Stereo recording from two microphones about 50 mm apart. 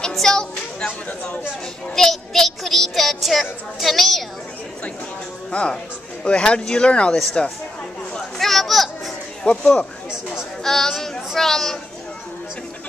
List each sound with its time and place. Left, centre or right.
0.1 s child singing: centre
2.0 s a child's voice: centre
5.5 s speech: left
8.1 s chatter: centre
9.4 s speech: centre
10.6 s speech: centre